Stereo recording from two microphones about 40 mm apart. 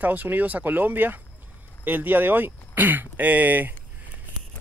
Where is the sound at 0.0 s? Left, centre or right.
Right.